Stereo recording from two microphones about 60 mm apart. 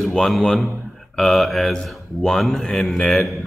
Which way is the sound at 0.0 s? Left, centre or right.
Centre.